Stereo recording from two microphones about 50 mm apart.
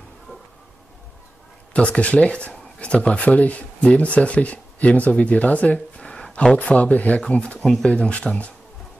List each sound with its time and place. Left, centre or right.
1.7 s speech: left
6.6 s speech: left
7.2 s speech: centre